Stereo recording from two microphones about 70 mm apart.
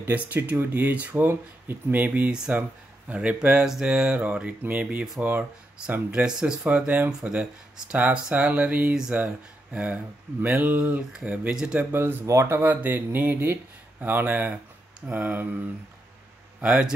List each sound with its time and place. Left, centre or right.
0.0 s speech: right
2.3 s speech: centre
7.1 s speech: centre
11.5 s speech: centre
11.9 s speech: right
16.6 s speech: centre